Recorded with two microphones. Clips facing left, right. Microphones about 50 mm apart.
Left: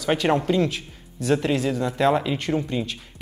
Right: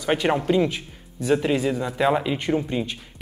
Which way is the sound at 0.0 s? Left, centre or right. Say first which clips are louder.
Left 1 dB; centre.